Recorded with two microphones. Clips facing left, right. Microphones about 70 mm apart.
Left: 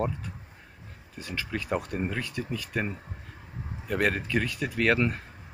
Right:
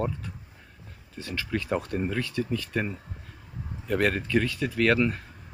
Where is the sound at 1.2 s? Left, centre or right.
Centre.